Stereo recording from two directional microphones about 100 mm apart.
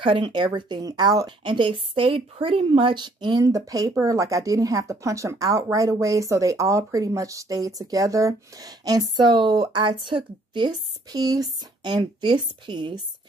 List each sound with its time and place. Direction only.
0.0 s speech: 55° right (ahead or behind)
1.4 s a woman's voice: 55° right (ahead or behind)
3.4 s speech: 35° right (ahead or behind)